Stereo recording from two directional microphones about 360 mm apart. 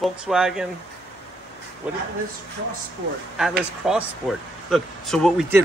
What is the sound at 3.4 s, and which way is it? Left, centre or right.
Speech, centre.